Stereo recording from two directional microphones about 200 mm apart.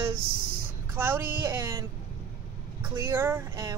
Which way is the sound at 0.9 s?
10° right (ahead or behind).